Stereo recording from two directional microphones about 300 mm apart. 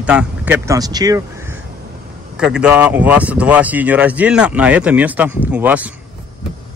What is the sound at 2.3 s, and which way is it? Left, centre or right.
Speech, centre.